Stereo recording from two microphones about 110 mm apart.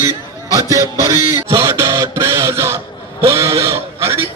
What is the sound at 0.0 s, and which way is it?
A man's voice, 30° right (ahead or behind).